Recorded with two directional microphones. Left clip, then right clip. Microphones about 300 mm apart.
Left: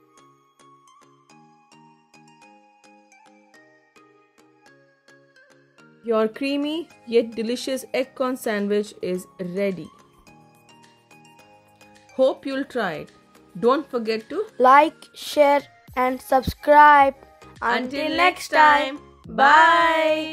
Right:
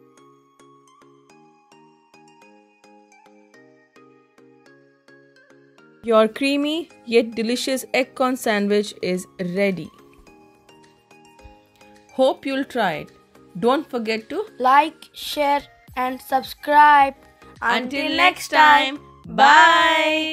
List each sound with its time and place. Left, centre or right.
6.0 s speech: centre
12.1 s speech: centre
14.6 s a child's voice: left
17.6 s speech: centre